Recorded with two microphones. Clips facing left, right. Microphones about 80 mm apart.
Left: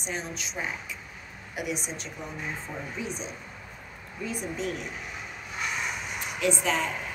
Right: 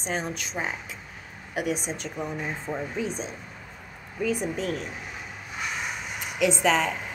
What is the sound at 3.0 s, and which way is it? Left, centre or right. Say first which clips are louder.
Speech: right 4 dB; right.